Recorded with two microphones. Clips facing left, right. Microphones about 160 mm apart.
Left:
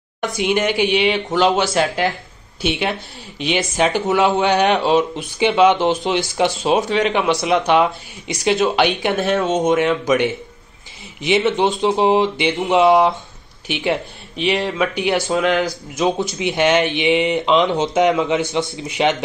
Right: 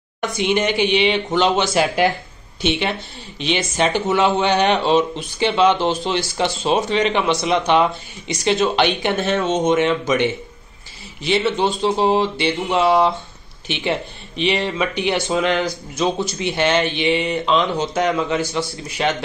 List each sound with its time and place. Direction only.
0.2 s speech: 5° left (ahead or behind)
1.7 s speech: 5° right (ahead or behind)
2.6 s speech: 5° left (ahead or behind)
13.7 s speech: 10° left (ahead or behind)
16.0 s speech: 20° left (ahead or behind)